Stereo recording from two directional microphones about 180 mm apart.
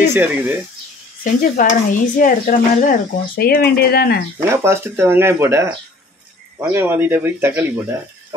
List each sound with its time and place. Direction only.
0.1 s speech: 10° right (ahead or behind)
1.2 s speech: 45° left (ahead or behind)
4.5 s speech: 15° right (ahead or behind)